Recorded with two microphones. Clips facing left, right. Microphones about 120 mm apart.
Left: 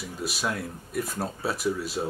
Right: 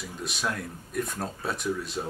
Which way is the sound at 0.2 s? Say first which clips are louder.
Left 2 dB; 5° left (ahead or behind).